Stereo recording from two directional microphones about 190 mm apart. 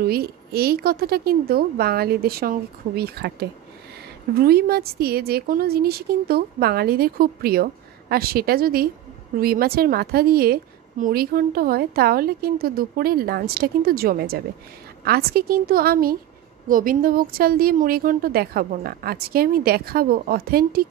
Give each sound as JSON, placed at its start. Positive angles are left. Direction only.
{"t": 0.0, "sound": "a woman's voice", "side_deg": -55}